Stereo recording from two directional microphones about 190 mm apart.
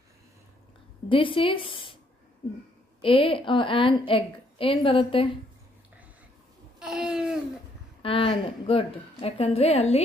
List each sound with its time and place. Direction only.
1.0 s a woman's voice: 25° left (ahead or behind)
3.0 s a woman's voice: 30° left (ahead or behind)
6.8 s a sound: 5° right (ahead or behind)
8.0 s a woman's voice: 30° left (ahead or behind)